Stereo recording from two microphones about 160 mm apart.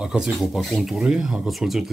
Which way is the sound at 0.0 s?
5° right (ahead or behind).